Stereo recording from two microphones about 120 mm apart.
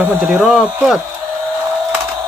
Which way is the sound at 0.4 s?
5° right (ahead or behind).